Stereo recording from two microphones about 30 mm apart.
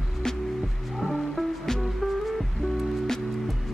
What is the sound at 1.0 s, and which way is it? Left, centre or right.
Music, centre.